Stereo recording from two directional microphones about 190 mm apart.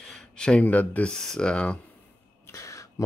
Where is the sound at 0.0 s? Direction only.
5° left (ahead or behind).